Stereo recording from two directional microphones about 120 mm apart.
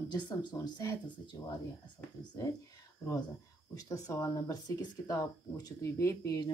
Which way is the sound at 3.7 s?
30° left (ahead or behind).